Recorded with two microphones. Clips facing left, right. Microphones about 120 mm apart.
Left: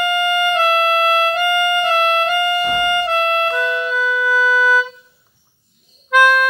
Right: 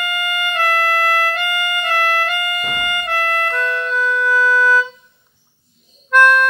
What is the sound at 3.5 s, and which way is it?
Music, 10° left (ahead or behind).